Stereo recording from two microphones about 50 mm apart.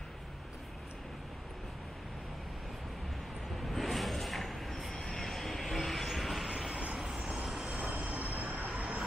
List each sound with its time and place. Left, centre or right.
3.6 s vehicle: centre
5.0 s train: centre
6.5 s vehicle: centre
7.0 s vehicle: centre
7.8 s train: right